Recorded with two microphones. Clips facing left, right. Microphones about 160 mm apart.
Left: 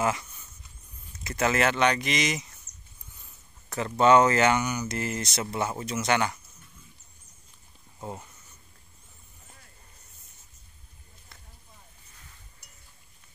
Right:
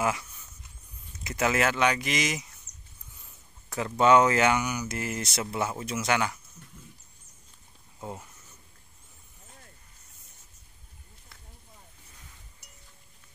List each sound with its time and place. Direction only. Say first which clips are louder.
0.0 s speech: left 1 dB; 5° right (ahead or behind)
2.7 s a sound: even; 50° left (ahead or behind)
4.0 s speech: left 1 dB; 10° right (ahead or behind)
8.0 s speech: left 1 dB; centre (ahead or behind)